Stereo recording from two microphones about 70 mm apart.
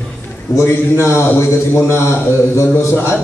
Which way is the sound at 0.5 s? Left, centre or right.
Left.